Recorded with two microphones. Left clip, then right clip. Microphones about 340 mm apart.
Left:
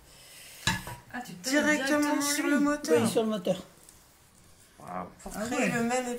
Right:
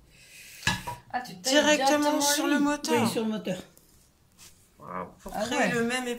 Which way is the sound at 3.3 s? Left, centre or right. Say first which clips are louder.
Left 4 dB; centre.